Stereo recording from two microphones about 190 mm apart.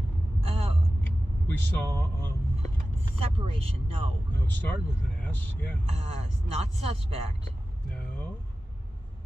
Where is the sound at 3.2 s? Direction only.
30° right (ahead or behind).